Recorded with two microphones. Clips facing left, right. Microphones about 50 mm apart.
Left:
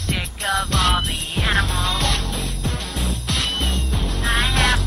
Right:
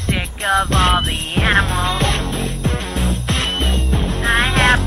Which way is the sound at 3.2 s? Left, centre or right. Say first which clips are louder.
Right 4 dB; right.